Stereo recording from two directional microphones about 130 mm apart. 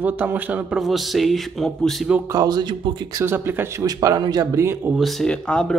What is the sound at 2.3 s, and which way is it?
Speech, 30° right (ahead or behind).